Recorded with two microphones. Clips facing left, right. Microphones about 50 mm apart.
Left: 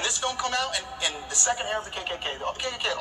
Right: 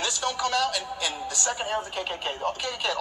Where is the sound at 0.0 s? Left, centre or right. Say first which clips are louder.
Right 1 dB; left.